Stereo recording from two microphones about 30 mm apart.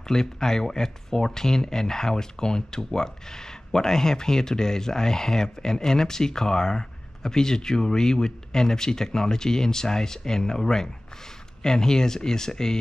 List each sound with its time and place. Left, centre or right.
0.1 s speech: centre
11.6 s speech: centre